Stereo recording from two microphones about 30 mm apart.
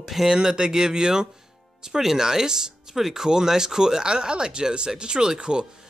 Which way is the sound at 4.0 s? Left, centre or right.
Right.